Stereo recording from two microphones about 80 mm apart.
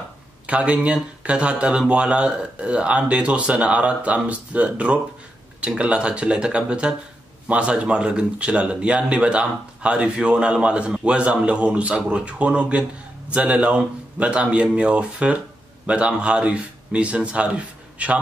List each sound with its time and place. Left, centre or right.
0.5 s speech: centre